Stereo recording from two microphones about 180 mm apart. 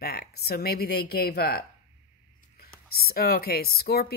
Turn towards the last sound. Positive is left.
turn(degrees=60)  # may be behind; listen again after turning